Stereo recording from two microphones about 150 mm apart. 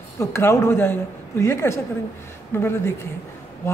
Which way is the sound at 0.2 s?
20° left (ahead or behind).